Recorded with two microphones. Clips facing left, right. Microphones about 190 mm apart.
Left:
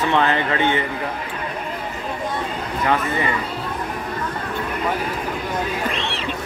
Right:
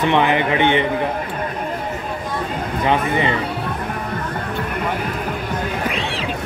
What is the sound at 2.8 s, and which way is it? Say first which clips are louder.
Speech: right 3 dB; 20° right (ahead or behind).